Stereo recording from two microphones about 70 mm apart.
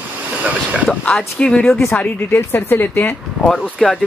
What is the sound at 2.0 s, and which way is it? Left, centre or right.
Speech, left.